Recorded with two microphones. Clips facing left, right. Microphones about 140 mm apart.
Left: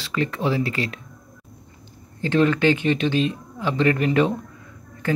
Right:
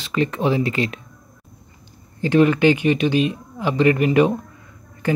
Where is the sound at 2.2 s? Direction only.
15° right (ahead or behind).